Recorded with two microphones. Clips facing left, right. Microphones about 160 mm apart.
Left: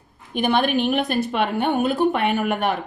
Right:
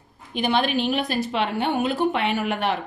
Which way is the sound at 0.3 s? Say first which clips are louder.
Left 2 dB; 55° left (ahead or behind).